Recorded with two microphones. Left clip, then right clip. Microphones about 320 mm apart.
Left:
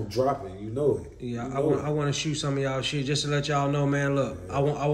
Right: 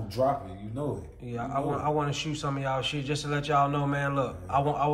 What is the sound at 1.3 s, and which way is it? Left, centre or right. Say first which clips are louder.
Speech: left 4 dB; right.